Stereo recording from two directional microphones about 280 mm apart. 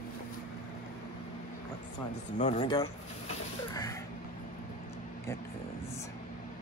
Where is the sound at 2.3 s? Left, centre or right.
Left.